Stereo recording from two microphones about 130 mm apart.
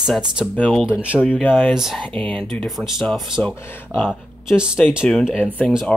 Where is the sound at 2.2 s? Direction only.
40° right (ahead or behind).